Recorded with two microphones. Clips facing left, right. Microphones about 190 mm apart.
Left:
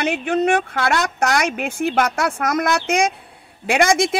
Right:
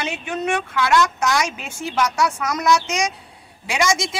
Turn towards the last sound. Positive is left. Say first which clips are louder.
# left 5 dB
turn(degrees=55)  # may be behind; listen again after turning